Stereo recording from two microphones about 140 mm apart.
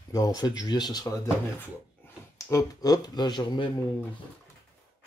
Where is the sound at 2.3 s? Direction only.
25° left (ahead or behind).